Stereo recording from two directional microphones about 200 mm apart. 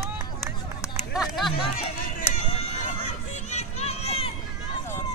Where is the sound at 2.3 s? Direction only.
35° left (ahead or behind).